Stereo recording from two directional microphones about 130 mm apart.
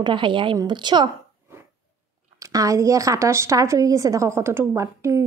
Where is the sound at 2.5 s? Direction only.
25° right (ahead or behind).